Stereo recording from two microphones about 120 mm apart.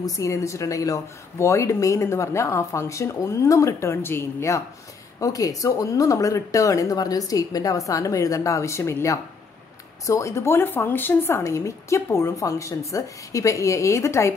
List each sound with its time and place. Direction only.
0.0 s speech: 25° left (ahead or behind)